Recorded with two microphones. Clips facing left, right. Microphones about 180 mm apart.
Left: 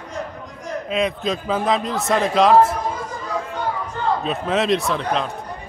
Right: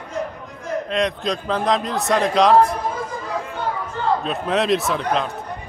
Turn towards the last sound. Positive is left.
turn(degrees=0)  # may be behind; listen again after turning